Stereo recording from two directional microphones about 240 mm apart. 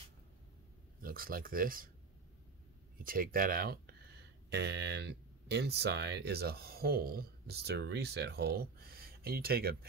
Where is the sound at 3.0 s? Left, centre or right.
Right.